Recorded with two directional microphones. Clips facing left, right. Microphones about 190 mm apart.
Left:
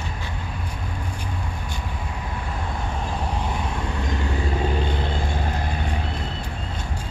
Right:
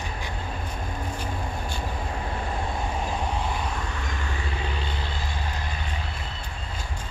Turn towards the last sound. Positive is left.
turn(degrees=55)  # may be behind; listen again after turning